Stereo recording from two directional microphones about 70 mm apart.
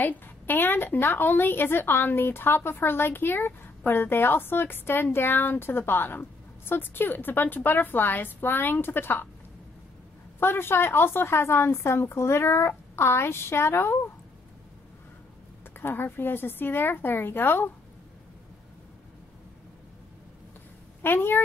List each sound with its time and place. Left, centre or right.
0.0 s a woman's voice: left
10.4 s a woman's voice: left
15.8 s a woman's voice: left
21.0 s speech: left